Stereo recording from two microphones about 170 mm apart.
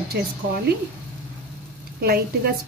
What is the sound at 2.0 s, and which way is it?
Speech, 65° right (ahead or behind).